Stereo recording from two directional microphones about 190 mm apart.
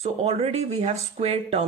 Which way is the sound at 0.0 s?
30° right (ahead or behind).